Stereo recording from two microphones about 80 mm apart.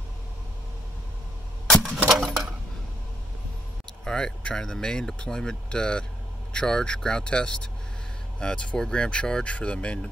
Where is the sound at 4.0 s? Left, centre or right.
Centre.